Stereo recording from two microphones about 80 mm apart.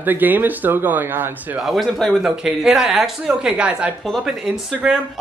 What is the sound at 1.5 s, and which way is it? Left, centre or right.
Speech, centre.